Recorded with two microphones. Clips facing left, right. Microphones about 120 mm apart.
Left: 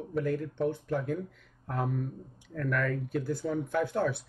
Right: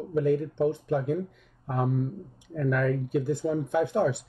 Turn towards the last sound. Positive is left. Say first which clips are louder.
# right 4 dB
turn(degrees=-20)  # may be behind; listen again after turning